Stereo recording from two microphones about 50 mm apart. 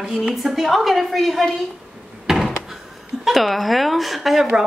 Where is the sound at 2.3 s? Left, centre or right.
Centre.